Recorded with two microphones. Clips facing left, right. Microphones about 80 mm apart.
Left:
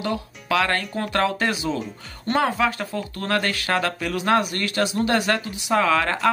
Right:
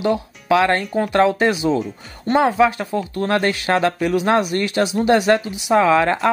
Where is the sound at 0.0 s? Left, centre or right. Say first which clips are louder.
Right 7 dB; right.